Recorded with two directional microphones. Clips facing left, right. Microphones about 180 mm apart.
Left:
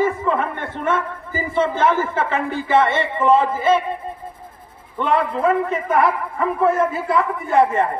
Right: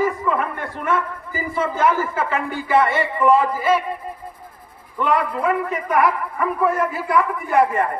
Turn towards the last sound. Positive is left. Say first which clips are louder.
# left 1 dB
turn(degrees=25)  # may be behind; listen again after turning